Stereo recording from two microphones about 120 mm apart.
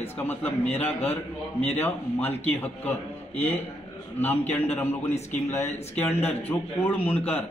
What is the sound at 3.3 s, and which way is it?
Speech, 55° left (ahead or behind).